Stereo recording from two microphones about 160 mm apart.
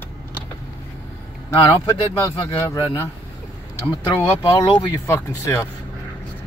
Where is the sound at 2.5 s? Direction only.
15° left (ahead or behind).